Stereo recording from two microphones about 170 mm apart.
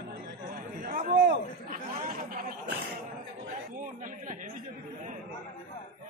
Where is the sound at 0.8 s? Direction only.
50° right (ahead or behind).